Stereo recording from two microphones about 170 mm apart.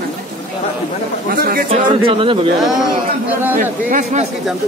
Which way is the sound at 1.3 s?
60° right (ahead or behind).